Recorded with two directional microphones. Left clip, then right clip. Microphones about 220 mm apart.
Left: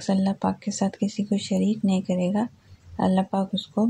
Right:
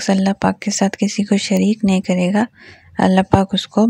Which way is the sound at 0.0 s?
45° right (ahead or behind).